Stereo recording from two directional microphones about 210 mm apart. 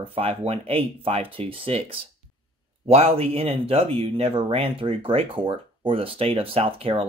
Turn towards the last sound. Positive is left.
turn(degrees=-25)  # may be behind; listen again after turning